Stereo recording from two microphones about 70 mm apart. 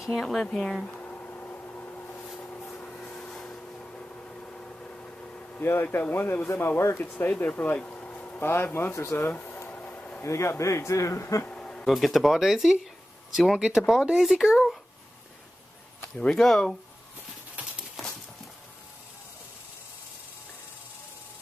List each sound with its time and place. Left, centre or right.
0.0 s speech: centre
0.8 s music: left
2.4 s a sound: left
3.0 s vehicle: centre
5.6 s speech: left; by 8.4 s centre
8.4 s speech: left
8.9 s speech: left
9.3 s speech: left
9.7 s a sound: left
10.2 s speech: left
11.4 s bee: centre
11.8 s speech: centre
16.2 s speech: centre